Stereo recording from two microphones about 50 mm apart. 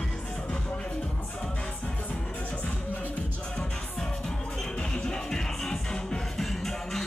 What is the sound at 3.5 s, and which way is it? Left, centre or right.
Music, centre.